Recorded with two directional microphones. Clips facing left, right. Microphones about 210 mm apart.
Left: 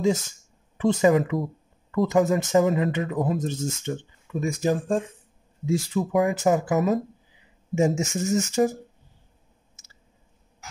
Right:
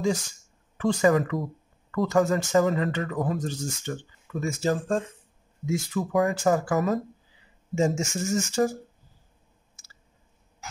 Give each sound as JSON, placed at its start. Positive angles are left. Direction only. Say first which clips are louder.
{"t": 0.7, "sound": "speech", "louder": "left 2 dB", "side_deg": 20}